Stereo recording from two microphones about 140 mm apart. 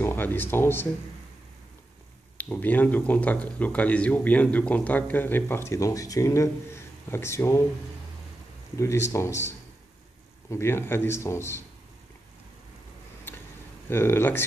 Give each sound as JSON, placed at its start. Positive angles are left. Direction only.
{"t": 0.0, "sound": "speech", "side_deg": 15}
{"t": 2.3, "sound": "speech", "side_deg": 10}
{"t": 8.7, "sound": "speech", "side_deg": 20}
{"t": 10.5, "sound": "speech", "side_deg": 20}
{"t": 13.8, "sound": "speech", "side_deg": 15}